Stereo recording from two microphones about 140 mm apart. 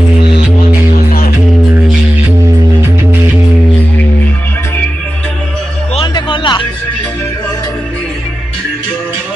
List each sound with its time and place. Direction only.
5.9 s music: 35° left (ahead or behind)